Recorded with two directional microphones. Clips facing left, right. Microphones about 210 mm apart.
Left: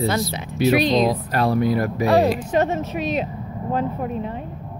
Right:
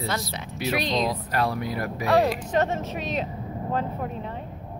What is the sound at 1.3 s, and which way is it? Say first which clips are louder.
Speech: left 7 dB; 30° left (ahead or behind).